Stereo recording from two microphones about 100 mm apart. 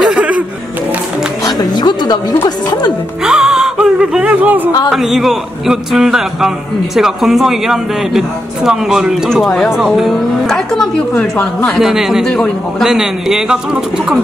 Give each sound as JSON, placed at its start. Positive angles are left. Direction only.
{"t": 0.0, "sound": "music", "side_deg": -10}
{"t": 1.4, "sound": "music", "side_deg": 45}
{"t": 2.4, "sound": "a woman's voice", "side_deg": 45}
{"t": 3.3, "sound": "music", "side_deg": -5}
{"t": 4.9, "sound": "a man's voice", "side_deg": 0}